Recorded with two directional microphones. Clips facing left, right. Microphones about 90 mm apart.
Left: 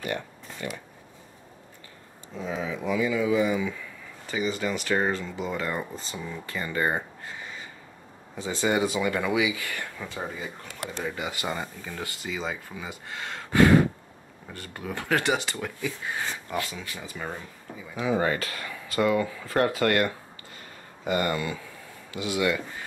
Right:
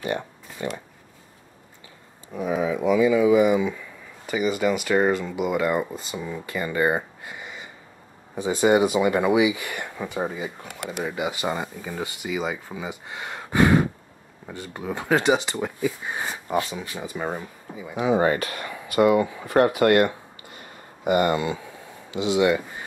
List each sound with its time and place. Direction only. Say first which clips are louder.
0.0 s a sound: right 4 dB; 20° right (ahead or behind)
2.3 s speech: right 7 dB; 15° right (ahead or behind); by 19.0 s 35° right (ahead or behind)
19.0 s speech: right 4 dB; 20° right (ahead or behind)